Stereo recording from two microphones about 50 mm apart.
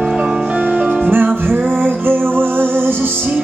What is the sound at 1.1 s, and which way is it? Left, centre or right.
Music, right.